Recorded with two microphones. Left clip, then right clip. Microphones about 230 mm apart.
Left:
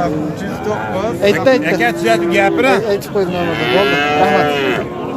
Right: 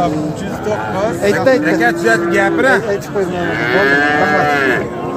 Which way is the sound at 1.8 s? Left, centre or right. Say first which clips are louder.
Right 1 dB; left.